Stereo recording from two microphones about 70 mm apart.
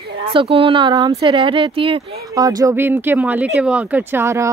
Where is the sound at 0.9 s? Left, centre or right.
Right.